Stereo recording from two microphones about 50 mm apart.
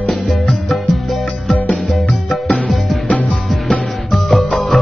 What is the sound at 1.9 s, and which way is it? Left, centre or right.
Music, centre.